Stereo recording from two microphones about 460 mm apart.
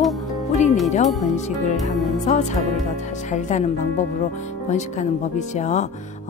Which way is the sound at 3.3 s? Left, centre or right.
Centre.